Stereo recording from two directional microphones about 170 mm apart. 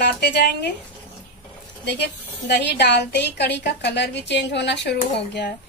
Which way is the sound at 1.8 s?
85° left.